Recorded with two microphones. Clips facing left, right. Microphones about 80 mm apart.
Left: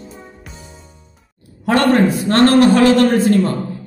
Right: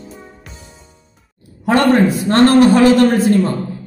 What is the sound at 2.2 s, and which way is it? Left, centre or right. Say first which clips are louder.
Speech: right 2 dB; centre.